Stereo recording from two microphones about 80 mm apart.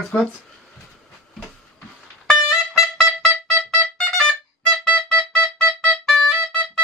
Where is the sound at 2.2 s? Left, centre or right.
Centre.